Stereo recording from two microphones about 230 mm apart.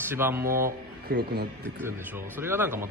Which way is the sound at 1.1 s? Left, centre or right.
Right.